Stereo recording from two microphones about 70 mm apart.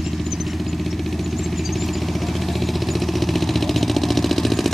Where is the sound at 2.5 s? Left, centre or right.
Centre.